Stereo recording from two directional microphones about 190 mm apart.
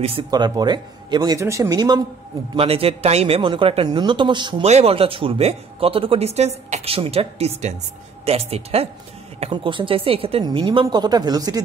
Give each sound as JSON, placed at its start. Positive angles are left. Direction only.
{"t": 0.0, "sound": "speech", "side_deg": -30}